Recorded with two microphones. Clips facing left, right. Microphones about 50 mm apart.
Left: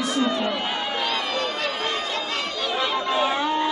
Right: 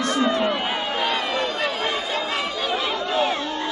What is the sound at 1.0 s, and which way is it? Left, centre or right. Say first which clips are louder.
Chatter: right 3 dB; centre.